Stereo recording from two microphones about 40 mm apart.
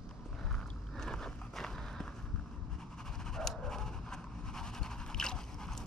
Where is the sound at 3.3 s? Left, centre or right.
Centre.